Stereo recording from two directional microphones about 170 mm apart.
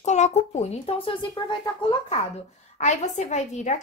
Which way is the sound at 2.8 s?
40° left (ahead or behind).